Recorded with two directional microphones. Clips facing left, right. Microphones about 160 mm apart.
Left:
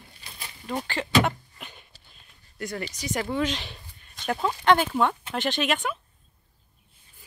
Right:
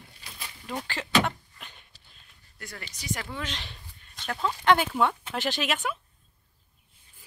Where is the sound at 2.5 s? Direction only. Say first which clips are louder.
Left 11 dB; 20° left (ahead or behind).